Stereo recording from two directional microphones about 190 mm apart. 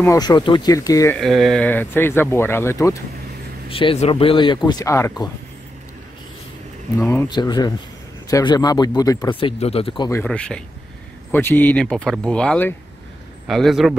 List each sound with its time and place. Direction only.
0.0 s speech: 15° left (ahead or behind)
1.1 s speech: centre (ahead or behind)
3.6 s speech: 30° left (ahead or behind)
7.0 s speech: 10° left (ahead or behind)
7.2 s speech: 20° left (ahead or behind)
10.2 s speech: 5° left (ahead or behind)